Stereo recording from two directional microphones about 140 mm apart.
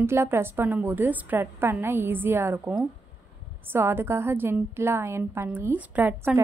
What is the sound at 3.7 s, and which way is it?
A woman's voice, 15° right (ahead or behind).